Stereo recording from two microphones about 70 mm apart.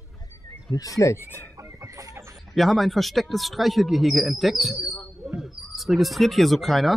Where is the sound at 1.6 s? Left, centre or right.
Right.